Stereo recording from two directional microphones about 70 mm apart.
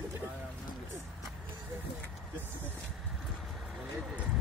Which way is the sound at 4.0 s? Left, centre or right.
Centre.